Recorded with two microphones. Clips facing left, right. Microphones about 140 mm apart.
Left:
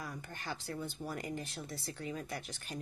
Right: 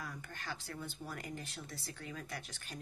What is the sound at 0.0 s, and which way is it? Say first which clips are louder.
Speech: left 3 dB; 20° left (ahead or behind).